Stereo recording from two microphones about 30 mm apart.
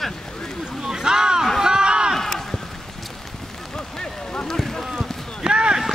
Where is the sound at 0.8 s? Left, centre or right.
Right.